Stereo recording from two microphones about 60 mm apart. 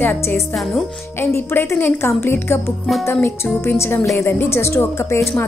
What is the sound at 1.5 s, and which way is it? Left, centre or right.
Speech, left.